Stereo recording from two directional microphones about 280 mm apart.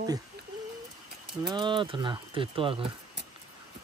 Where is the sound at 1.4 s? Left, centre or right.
Centre.